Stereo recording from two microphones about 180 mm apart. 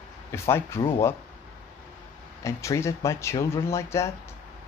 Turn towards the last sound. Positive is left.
turn(degrees=15)  # may be behind; listen again after turning